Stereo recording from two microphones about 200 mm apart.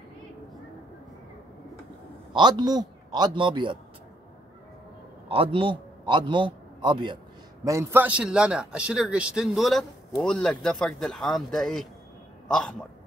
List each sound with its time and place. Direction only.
2.3 s a man's voice: 20° right (ahead or behind)
5.3 s a man's voice: 25° right (ahead or behind); by 12.7 s 5° left (ahead or behind)